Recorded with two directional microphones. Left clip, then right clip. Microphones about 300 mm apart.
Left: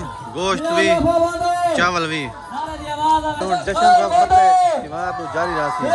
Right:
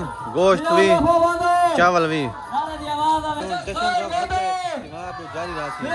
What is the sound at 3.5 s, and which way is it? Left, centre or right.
Speech, centre.